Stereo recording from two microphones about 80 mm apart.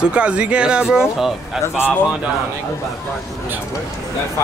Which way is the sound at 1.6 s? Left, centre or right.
Left.